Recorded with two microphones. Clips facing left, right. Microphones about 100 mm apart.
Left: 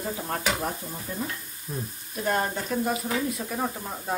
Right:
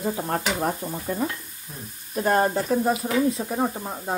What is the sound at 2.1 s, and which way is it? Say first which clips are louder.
Speech: right 6 dB; 40° right (ahead or behind).